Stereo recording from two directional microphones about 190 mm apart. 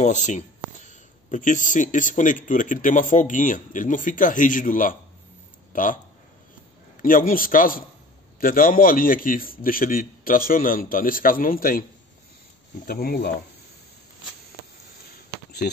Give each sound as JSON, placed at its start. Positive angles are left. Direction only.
{"t": 0.0, "sound": "speech", "side_deg": 40}
{"t": 7.0, "sound": "speech", "side_deg": 45}
{"t": 12.8, "sound": "speech", "side_deg": 50}
{"t": 15.6, "sound": "speech", "side_deg": 50}